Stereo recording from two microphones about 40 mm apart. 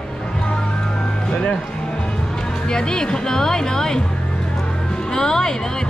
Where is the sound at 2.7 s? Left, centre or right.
Centre.